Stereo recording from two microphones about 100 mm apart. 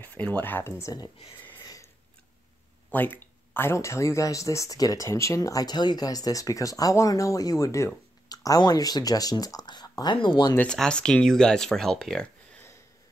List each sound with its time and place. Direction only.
0.0 s speech: 15° left (ahead or behind)
1.5 s sniff: 45° left (ahead or behind)
2.9 s speech: 20° left (ahead or behind); by 10.5 s 55° left (ahead or behind)
10.7 s speech: 10° left (ahead or behind)